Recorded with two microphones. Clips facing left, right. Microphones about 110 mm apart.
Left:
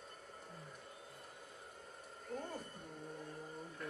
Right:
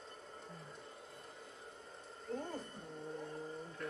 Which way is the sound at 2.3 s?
10° left (ahead or behind).